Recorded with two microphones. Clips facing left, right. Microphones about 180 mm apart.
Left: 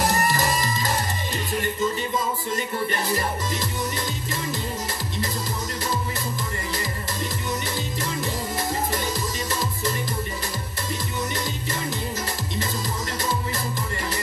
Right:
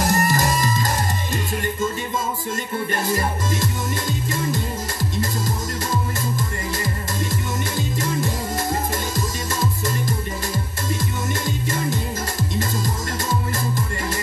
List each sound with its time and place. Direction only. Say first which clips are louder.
0.0 s music: right 3 dB; 45° right (ahead or behind)
2.9 s music: right 3 dB; 45° right (ahead or behind)